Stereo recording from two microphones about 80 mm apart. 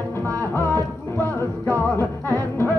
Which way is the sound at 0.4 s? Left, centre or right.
Left.